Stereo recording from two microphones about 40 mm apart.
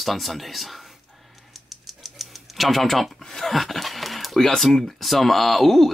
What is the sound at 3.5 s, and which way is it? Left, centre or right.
Speech, centre.